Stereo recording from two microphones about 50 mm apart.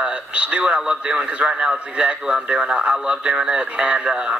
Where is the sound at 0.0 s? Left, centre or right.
Right.